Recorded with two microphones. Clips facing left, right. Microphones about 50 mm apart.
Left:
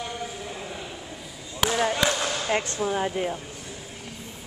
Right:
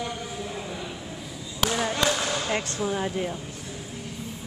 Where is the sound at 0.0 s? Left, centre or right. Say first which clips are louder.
Right 1 dB; centre.